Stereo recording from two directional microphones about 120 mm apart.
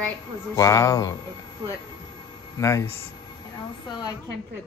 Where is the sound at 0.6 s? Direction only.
25° left (ahead or behind).